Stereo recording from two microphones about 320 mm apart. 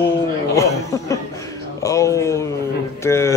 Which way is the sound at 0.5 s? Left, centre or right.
Centre.